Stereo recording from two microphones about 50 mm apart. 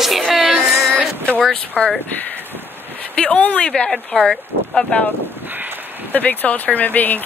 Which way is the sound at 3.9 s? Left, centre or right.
Centre.